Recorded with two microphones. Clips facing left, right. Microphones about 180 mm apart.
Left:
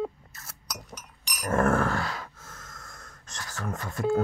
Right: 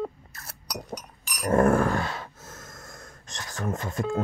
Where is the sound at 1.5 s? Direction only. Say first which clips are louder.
Right 3 dB; 15° right (ahead or behind).